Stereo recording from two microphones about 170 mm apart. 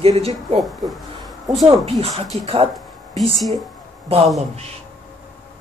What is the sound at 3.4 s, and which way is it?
Speech, centre (ahead or behind).